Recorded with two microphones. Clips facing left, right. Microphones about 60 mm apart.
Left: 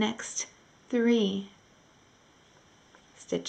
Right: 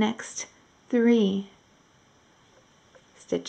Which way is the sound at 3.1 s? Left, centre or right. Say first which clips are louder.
Right 3 dB; centre.